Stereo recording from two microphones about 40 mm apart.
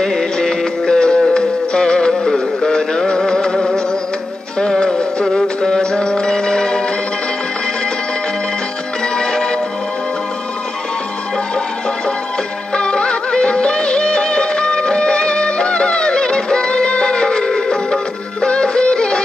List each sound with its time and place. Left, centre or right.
0.0 s music: centre
9.1 s music: centre
12.7 s music: left